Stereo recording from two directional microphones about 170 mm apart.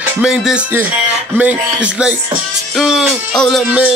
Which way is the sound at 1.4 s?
5° right (ahead or behind).